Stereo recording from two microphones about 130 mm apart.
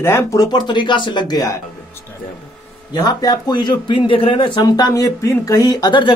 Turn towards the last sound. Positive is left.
turn(degrees=35)  # may be behind; listen again after turning